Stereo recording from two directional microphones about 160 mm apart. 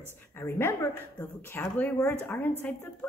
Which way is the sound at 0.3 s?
15° left (ahead or behind).